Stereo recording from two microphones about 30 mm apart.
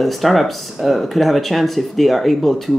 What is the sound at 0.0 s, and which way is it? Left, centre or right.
Speech, centre.